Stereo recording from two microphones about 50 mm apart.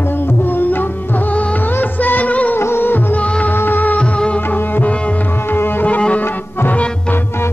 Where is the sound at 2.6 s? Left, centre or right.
Left.